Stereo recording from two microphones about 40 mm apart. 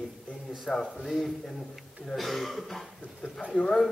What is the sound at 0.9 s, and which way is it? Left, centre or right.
Speech, centre.